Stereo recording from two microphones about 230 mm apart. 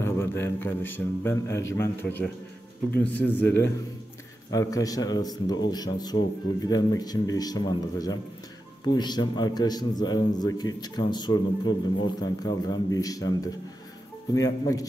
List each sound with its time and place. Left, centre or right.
0.0 s a man's voice: centre